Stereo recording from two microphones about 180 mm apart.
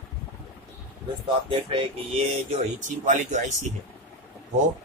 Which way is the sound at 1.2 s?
30° right (ahead or behind).